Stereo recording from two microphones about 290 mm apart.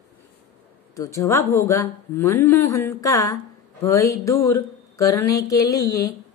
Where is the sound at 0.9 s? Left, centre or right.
Centre.